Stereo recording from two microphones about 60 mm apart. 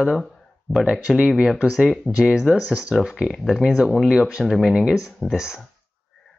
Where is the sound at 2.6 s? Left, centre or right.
Centre.